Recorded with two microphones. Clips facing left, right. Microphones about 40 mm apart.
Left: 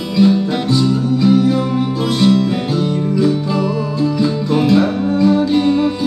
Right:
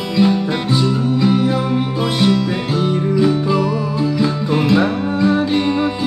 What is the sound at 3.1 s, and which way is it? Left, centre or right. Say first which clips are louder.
Music: right 1 dB; centre.